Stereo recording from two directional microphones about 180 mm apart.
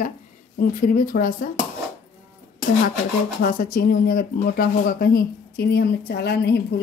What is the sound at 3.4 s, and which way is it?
Speech, 50° left (ahead or behind).